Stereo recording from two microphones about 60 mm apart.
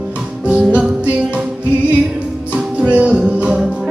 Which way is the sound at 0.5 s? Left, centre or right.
Centre.